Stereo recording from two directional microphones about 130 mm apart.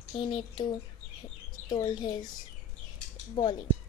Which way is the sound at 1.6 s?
35° left (ahead or behind).